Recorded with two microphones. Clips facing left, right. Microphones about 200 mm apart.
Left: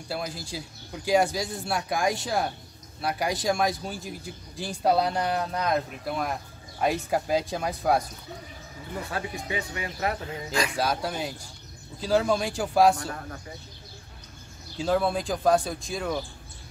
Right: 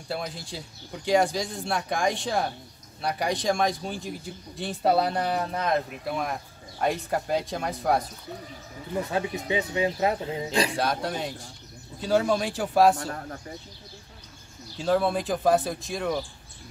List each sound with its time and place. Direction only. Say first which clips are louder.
0.1 s speech: even; centre (ahead or behind)
9.1 s speech: right 4 dB; 20° right (ahead or behind)
10.8 s speech: even; centre (ahead or behind)
14.8 s speech: right 1 dB; centre (ahead or behind)